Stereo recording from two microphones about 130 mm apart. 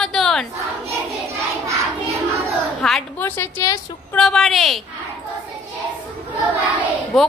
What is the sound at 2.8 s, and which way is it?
Speech, 5° left (ahead or behind).